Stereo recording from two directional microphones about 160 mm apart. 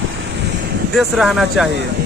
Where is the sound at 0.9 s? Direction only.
Centre (ahead or behind).